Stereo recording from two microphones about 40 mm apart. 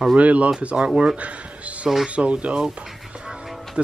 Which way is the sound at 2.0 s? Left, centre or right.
Right.